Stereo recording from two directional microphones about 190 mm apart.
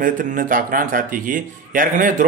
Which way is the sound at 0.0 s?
45° right (ahead or behind).